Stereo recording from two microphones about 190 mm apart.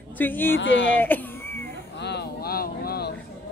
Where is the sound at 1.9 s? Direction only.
60° left (ahead or behind).